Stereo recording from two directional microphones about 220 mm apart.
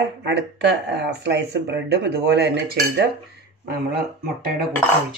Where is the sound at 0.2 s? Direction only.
50° right (ahead or behind).